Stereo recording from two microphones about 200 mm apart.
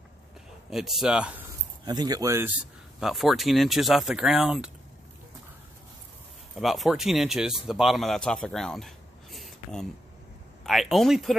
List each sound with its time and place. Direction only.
0.7 s speech: centre (ahead or behind)
1.9 s speech: 20° right (ahead or behind)
3.0 s speech: centre (ahead or behind)
6.6 s speech: centre (ahead or behind)